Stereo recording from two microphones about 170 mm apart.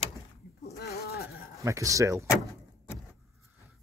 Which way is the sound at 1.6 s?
20° right (ahead or behind).